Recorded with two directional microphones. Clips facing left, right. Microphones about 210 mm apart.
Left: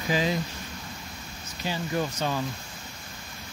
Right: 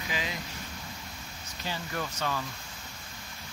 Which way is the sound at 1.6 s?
20° left (ahead or behind).